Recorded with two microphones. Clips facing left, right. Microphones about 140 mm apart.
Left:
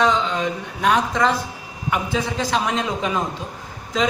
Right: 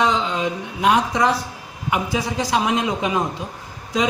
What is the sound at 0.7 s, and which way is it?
A woman's voice, 15° right (ahead or behind).